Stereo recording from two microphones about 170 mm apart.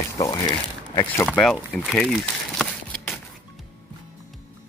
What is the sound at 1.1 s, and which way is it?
Speech, 10° left (ahead or behind).